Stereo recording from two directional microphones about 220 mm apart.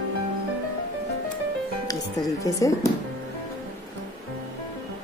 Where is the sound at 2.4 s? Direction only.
15° left (ahead or behind).